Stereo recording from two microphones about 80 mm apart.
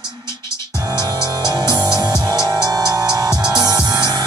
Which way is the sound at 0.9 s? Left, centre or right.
Right.